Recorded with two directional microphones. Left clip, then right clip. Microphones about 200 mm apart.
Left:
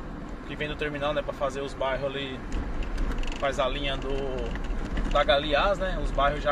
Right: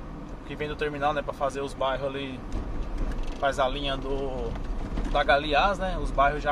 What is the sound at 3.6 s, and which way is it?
Speech, 30° right (ahead or behind).